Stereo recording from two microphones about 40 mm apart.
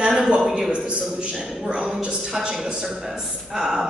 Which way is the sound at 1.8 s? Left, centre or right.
Centre.